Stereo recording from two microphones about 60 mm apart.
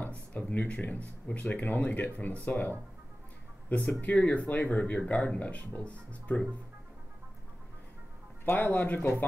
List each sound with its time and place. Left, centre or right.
0.0 s a sound: left
0.7 s speech: left
8.5 s speech: left